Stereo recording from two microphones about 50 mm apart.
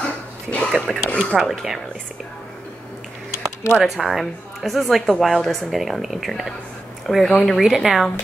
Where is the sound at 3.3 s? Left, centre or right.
Left.